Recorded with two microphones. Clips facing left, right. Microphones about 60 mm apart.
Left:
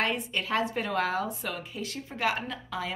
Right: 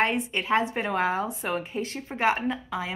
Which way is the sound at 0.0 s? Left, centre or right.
Right.